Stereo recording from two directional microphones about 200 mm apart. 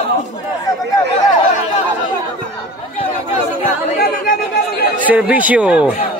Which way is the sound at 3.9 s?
50° left (ahead or behind).